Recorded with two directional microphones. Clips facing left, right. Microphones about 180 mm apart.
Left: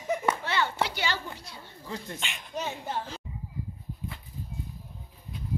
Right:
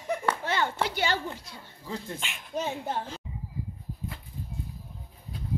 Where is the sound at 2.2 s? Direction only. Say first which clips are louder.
Even; centre (ahead or behind).